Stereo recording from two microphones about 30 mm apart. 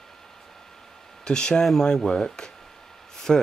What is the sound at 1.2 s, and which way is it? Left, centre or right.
Speech, left.